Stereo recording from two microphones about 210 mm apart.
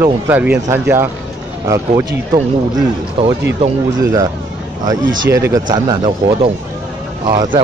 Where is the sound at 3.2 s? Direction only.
25° right (ahead or behind).